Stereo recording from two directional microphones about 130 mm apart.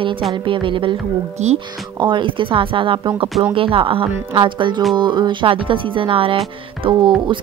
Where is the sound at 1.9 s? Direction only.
40° right (ahead or behind).